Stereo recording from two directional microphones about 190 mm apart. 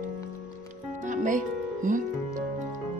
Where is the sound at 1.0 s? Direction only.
40° right (ahead or behind).